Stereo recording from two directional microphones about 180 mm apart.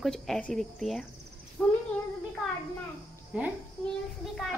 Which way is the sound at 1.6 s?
10° left (ahead or behind).